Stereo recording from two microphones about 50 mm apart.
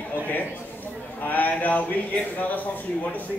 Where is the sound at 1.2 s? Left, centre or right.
Left.